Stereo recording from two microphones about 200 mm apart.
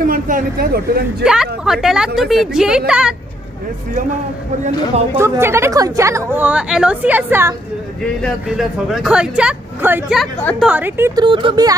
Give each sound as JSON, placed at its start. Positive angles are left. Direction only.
{"t": 0.0, "sound": "speech", "side_deg": -45}
{"t": 1.2, "sound": "speech", "side_deg": -5}
{"t": 5.1, "sound": "a woman's voice", "side_deg": -15}
{"t": 11.2, "sound": "speech", "side_deg": -25}